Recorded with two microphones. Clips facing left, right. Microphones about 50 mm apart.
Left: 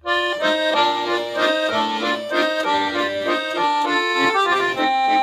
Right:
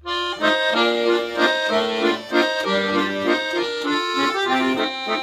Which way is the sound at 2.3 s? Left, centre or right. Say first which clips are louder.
Left 2 dB; centre.